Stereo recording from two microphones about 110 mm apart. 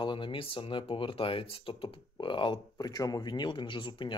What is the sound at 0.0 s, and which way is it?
Speech, 50° left (ahead or behind).